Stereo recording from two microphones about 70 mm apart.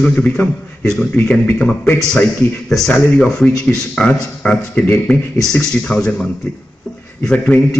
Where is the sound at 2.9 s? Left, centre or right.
Centre.